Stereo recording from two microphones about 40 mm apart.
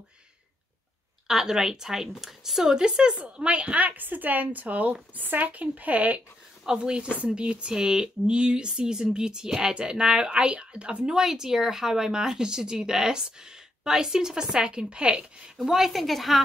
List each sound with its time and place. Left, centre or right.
1.2 s a woman's voice: centre; by 6.2 s right
6.8 s speech: right
11.1 s speech: centre
15.5 s a woman's voice: centre